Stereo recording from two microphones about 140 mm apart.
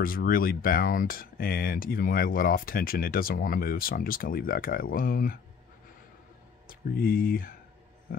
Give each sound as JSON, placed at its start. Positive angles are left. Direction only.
{"t": 0.0, "sound": "speech", "side_deg": 90}
{"t": 6.7, "sound": "speech", "side_deg": 90}
{"t": 8.1, "sound": "oink", "side_deg": 90}